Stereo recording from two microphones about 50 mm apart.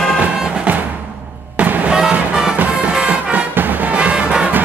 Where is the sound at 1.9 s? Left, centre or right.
Centre.